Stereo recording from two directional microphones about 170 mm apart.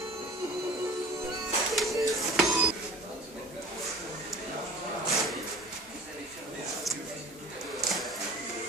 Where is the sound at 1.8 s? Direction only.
Centre (ahead or behind).